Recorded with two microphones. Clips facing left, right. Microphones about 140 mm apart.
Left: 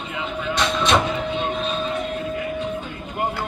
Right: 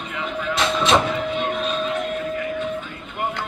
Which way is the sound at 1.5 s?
30° left (ahead or behind).